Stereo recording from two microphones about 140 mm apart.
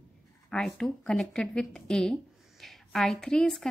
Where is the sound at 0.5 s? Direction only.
5° left (ahead or behind).